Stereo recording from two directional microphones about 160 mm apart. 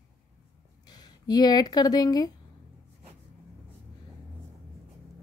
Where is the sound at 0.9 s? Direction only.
25° left (ahead or behind).